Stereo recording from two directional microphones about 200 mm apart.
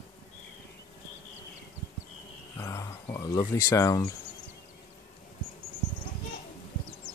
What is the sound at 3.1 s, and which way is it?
Speech, 20° left (ahead or behind).